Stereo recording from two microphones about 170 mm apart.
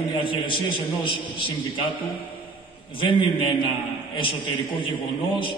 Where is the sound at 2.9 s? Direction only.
30° left (ahead or behind).